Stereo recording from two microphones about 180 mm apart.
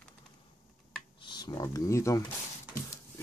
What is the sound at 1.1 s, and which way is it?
Speech, 25° left (ahead or behind).